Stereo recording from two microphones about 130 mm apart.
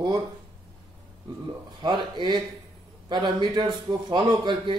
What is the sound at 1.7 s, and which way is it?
A man's voice, 35° right (ahead or behind).